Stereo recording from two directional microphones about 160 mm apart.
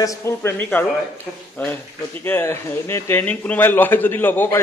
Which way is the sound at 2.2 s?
15° left (ahead or behind).